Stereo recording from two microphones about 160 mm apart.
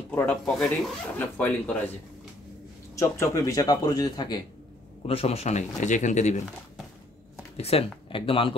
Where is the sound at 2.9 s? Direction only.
20° left (ahead or behind).